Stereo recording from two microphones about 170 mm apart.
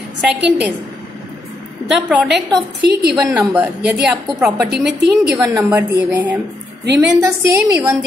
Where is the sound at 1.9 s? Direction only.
5° right (ahead or behind).